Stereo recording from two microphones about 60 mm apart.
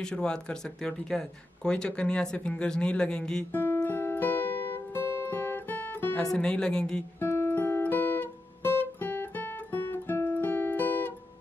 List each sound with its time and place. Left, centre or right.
0.0 s speech: centre
3.5 s music: left
6.3 s speech: centre
7.2 s guitar: left